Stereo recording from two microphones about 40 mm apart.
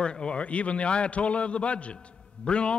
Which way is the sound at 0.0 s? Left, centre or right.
Left.